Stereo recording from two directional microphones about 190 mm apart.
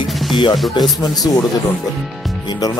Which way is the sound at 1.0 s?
20° left (ahead or behind).